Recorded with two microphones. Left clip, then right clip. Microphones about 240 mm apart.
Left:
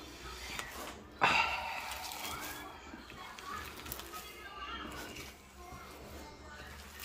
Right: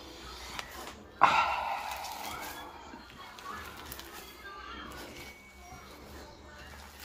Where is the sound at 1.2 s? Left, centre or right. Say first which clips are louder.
Right 5 dB; centre.